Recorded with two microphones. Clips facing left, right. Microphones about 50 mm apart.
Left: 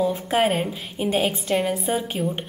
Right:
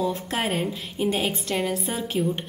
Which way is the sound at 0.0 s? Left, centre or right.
Centre.